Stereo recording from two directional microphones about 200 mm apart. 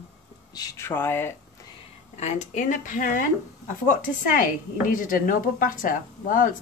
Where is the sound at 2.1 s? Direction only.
35° left (ahead or behind).